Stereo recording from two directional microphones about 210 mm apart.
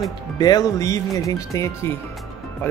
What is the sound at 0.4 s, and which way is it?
Speech, 20° left (ahead or behind).